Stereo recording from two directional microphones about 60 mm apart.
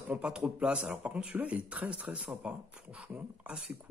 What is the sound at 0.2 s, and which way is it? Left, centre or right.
A man's voice, centre.